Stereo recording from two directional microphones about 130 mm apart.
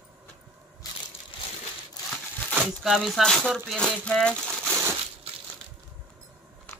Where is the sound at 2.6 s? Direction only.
Centre (ahead or behind).